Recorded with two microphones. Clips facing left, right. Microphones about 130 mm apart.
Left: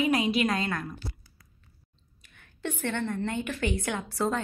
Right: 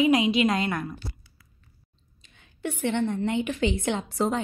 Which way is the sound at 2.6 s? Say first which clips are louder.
Right 5 dB; 10° right (ahead or behind).